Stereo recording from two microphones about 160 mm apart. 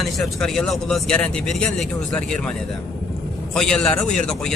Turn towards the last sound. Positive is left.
turn(degrees=5)  # may be behind; listen again after turning